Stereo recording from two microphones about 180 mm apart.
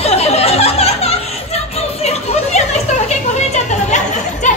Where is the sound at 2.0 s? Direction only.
40° left (ahead or behind).